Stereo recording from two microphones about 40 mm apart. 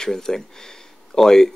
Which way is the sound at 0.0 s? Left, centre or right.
Centre.